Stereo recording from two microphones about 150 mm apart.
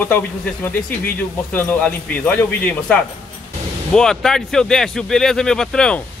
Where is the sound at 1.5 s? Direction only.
10° left (ahead or behind).